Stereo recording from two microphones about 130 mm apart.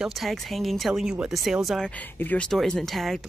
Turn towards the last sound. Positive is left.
turn(degrees=0)  # may be behind; listen again after turning